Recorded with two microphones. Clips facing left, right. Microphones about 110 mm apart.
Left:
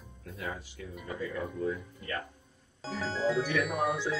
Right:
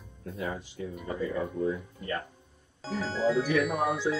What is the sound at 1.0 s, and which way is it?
Speech, 35° right (ahead or behind).